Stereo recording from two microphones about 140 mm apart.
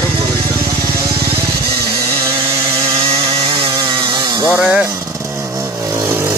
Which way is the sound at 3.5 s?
30° right (ahead or behind).